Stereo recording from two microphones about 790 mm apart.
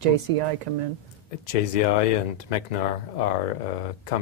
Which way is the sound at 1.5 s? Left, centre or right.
Left.